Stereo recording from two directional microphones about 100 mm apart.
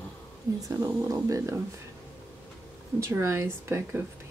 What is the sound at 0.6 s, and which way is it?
Speech, 35° right (ahead or behind).